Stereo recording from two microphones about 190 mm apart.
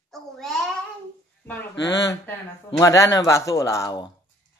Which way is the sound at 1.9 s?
20° left (ahead or behind).